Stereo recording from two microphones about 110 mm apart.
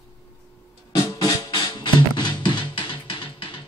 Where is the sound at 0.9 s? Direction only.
35° left (ahead or behind).